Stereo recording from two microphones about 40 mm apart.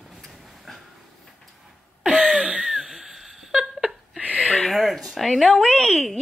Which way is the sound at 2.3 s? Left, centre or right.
Right.